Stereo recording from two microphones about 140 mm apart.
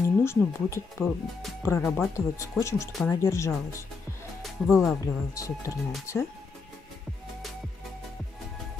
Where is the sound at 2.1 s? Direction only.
20° left (ahead or behind).